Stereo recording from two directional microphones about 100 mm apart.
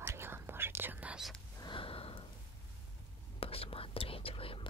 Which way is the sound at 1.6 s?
55° left (ahead or behind).